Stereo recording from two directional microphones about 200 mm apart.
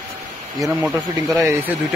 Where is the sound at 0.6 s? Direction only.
5° right (ahead or behind).